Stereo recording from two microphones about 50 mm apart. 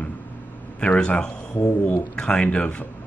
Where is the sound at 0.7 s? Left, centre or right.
Left.